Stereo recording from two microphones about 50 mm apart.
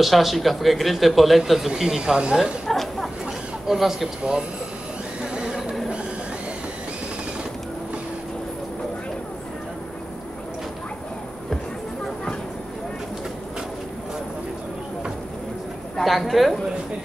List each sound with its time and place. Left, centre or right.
0.0 s a man's voice: centre
2.6 s a sound: centre
3.6 s a man's voice: centre
5.2 s a sound: centre
5.6 s printer: centre
16.0 s a man's voice: centre